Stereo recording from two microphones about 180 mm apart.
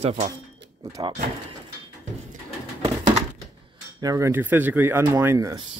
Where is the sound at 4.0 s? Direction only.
15° right (ahead or behind).